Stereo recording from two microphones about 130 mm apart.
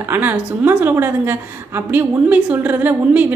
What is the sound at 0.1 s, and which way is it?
A woman's voice, 15° right (ahead or behind).